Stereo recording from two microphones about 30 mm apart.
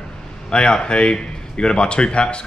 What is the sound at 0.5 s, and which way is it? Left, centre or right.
A man's voice, left.